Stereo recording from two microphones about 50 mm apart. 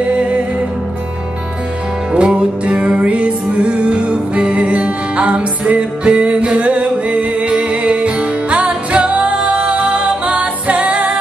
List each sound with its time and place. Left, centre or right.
0.0 s music: right
2.1 s music: right